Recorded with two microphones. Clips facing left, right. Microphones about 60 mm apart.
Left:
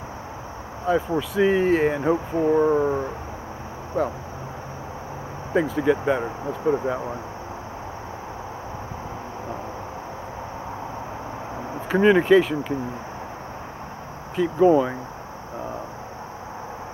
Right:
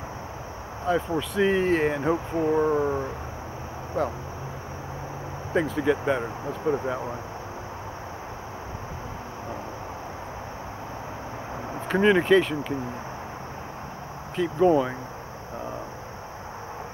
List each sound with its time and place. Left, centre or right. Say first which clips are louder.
0.8 s speech: left 3 dB; centre
5.5 s speech: left 3 dB; centre
11.9 s speech: left 3 dB; centre
14.3 s speech: left 3 dB; centre